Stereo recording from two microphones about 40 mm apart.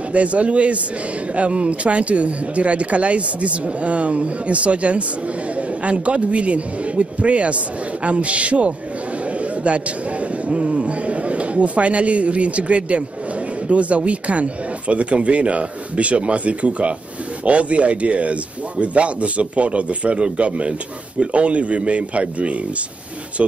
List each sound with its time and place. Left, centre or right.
0.1 s speech: right
9.4 s a sound: right
10.5 s speech: right